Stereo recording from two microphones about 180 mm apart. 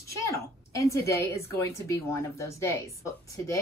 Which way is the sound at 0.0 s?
15° left (ahead or behind).